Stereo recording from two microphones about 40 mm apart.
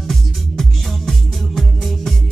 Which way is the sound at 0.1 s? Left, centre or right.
Centre.